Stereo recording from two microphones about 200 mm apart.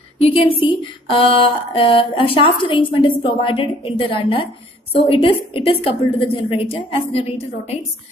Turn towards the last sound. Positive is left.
turn(degrees=30)  # may be behind; listen again after turning